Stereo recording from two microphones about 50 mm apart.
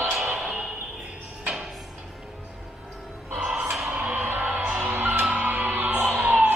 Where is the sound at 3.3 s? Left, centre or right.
Right.